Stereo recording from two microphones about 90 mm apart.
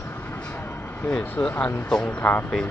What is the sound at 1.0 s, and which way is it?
Speech, 20° left (ahead or behind).